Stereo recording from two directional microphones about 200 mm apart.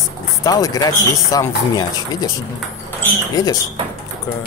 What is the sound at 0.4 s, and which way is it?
Speech, 15° left (ahead or behind).